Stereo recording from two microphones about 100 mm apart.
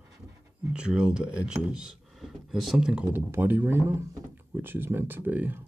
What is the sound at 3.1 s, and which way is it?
Speech, 20° right (ahead or behind).